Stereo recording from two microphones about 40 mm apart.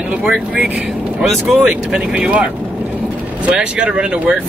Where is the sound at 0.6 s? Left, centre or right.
Right.